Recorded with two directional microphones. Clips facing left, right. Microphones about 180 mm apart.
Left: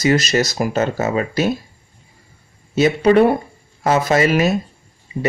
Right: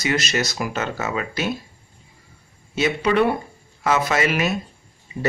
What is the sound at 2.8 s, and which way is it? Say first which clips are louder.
Speech: left 7 dB; 40° left (ahead or behind).